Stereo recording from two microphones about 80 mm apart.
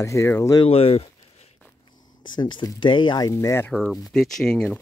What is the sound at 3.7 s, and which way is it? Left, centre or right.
Speech, centre.